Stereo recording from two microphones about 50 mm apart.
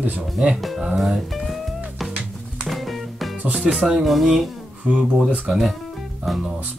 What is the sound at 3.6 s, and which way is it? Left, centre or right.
Speech, centre.